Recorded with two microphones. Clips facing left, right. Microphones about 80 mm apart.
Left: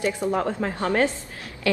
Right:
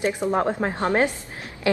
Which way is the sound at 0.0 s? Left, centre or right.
Right.